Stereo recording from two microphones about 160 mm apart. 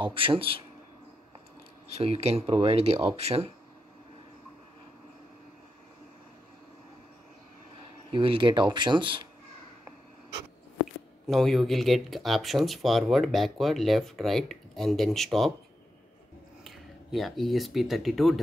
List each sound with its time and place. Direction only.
0.0 s speech: 30° right (ahead or behind)
2.0 s speech: 40° right (ahead or behind)
8.1 s speech: 30° right (ahead or behind)
11.2 s speech: centre (ahead or behind)
16.6 s speech: centre (ahead or behind)